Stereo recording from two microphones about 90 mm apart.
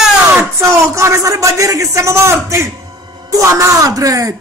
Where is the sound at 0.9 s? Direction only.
35° right (ahead or behind).